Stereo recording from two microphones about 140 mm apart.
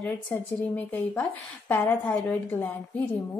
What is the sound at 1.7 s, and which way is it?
Speech, 5° left (ahead or behind).